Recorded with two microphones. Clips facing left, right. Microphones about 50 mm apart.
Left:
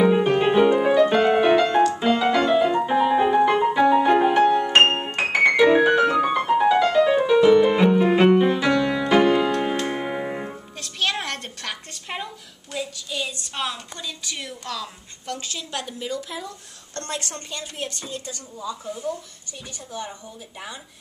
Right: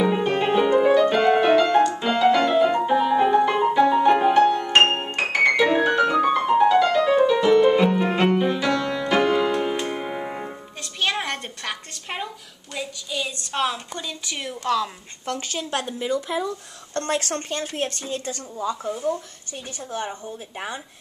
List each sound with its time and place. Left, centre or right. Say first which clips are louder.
0.0 s music: left 3 dB; centre
3.8 s piano: even; centre
9.8 s music: left 2 dB; centre
12.7 s a sound: even; centre; by 14.9 s right
15.2 s a woman's voice: right 4 dB; right
17.2 s speech: right 6 dB; right
20.1 s speech: right 5 dB; right